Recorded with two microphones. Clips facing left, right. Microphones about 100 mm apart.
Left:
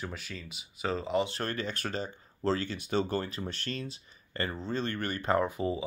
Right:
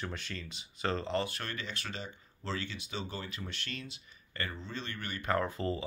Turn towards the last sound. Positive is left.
turn(degrees=10)  # may be behind; listen again after turning